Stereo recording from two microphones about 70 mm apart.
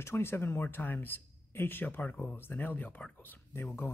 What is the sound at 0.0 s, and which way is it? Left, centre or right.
Speech, left.